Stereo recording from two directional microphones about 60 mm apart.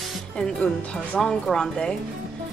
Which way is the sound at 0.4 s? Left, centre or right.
Centre.